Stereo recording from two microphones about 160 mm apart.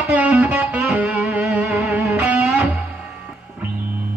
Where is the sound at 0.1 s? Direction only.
10° right (ahead or behind).